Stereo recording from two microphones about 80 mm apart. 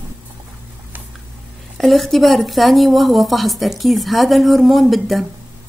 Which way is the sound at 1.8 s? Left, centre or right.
Centre.